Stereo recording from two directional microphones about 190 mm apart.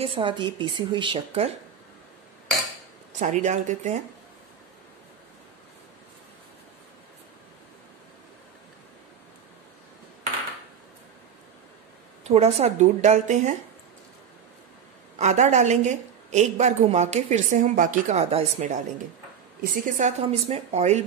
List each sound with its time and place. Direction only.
0.0 s a woman's voice: 25° right (ahead or behind)
3.1 s a woman's voice: 40° right (ahead or behind)
12.2 s a woman's voice: 35° right (ahead or behind)
15.1 s a woman's voice: 40° right (ahead or behind)